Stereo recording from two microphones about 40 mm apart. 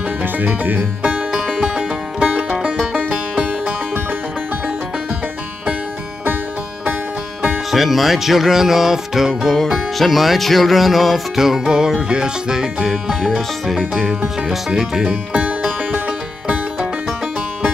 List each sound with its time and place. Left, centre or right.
1.0 s music: right
7.7 s music: centre
13.2 s music: centre
14.5 s music: centre
15.0 s music: right